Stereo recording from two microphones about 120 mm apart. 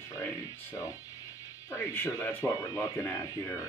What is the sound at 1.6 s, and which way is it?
Speech, 20° left (ahead or behind).